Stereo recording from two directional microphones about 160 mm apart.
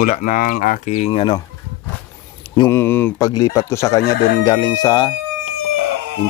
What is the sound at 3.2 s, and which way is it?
Speech, 25° left (ahead or behind).